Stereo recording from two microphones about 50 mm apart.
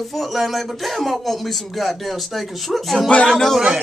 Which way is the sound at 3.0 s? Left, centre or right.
Centre.